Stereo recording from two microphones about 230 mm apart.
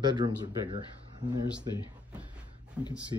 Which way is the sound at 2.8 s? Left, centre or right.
Centre.